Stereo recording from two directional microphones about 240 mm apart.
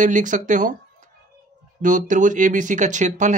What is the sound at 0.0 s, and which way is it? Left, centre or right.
Speech, right.